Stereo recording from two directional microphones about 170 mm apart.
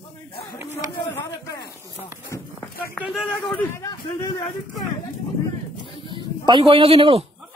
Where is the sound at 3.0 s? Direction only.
Centre (ahead or behind).